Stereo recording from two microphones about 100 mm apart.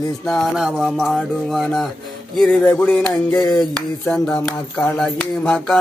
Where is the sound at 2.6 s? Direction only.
15° left (ahead or behind).